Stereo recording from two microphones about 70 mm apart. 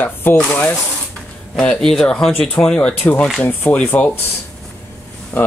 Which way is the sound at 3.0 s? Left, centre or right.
Left.